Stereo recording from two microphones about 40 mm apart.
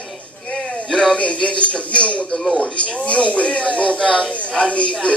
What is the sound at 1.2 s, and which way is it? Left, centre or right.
A man's voice, left.